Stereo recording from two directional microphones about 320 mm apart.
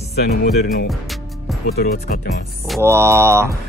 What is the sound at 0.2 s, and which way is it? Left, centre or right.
Music, left.